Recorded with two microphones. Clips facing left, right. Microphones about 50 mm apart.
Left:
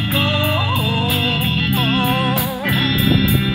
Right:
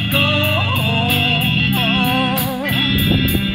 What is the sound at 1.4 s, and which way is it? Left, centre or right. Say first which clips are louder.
Music: right 1 dB; right.